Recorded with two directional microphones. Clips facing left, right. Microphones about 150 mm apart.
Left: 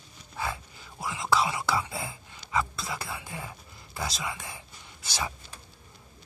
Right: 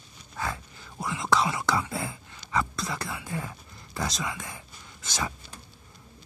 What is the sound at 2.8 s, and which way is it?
Speech, 5° left (ahead or behind).